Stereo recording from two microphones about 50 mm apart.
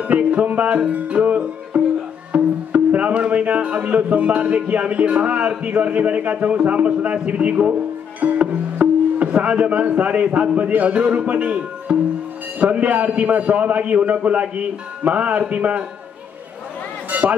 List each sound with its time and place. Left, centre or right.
0.0 s a man's voice: right
2.3 s music: right
5.6 s a man's voice: right
8.2 s music: right
9.3 s a man's voice: right
10.6 s a man's voice: right
17.1 s a man's voice: right